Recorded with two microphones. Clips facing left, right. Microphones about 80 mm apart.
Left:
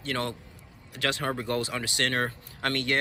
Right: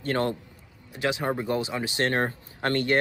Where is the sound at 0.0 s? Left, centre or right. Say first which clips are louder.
Right 5 dB; right.